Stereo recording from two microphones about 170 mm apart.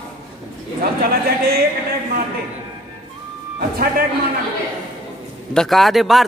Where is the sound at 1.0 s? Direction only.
65° right (ahead or behind).